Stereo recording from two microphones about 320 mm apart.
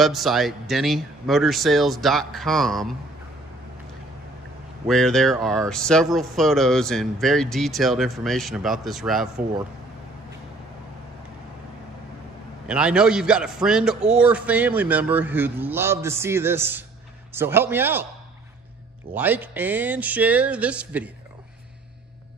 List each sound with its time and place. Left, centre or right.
0.0 s speech: centre
4.8 s speech: centre
12.6 s a man's voice: centre
19.1 s speech: centre